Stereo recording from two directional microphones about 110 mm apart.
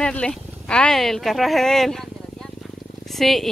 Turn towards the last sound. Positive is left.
turn(degrees=0)  # may be behind; listen again after turning